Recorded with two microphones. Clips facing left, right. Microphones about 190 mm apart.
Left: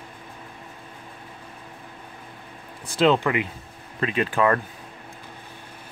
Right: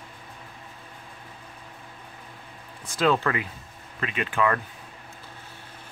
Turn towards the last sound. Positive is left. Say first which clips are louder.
# left 4 dB
turn(degrees=40)  # may be behind; listen again after turning